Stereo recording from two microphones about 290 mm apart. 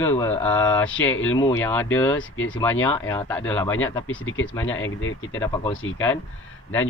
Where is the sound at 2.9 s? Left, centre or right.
Centre.